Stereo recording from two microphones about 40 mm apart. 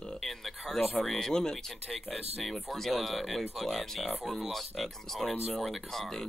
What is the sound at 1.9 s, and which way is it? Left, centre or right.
Speech, centre.